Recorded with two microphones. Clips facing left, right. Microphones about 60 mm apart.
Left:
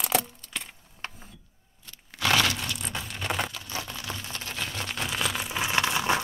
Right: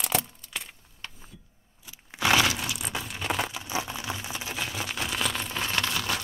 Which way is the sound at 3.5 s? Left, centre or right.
Centre.